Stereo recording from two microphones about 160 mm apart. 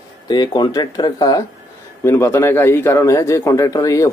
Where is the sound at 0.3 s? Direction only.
25° left (ahead or behind).